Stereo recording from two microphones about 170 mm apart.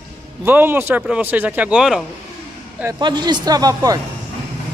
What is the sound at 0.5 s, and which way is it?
A man's voice, 10° right (ahead or behind).